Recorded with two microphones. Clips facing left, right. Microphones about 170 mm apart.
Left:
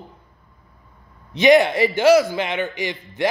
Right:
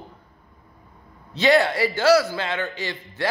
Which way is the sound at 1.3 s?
20° left (ahead or behind).